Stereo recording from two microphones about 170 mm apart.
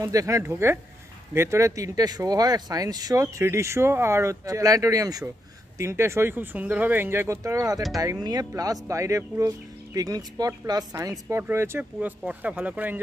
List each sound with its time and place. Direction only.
0.0 s speech: 20° right (ahead or behind)